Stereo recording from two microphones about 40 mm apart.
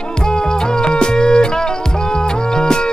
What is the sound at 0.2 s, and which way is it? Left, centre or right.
Music, centre.